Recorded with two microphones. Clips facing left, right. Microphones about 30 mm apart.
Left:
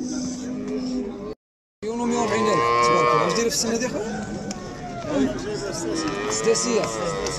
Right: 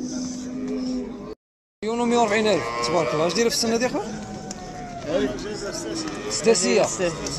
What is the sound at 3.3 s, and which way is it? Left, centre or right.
Speech, right.